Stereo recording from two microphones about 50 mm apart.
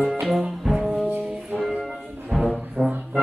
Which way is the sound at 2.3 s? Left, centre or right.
Centre.